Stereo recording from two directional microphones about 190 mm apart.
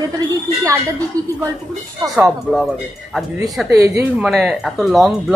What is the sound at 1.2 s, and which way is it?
Speech, 20° right (ahead or behind).